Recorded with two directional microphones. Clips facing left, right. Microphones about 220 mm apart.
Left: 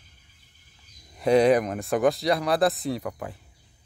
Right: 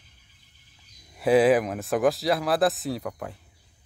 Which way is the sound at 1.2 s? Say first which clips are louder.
Even; 5° right (ahead or behind).